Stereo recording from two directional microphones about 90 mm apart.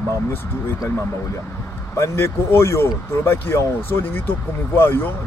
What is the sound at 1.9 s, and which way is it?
Speech, 30° left (ahead or behind).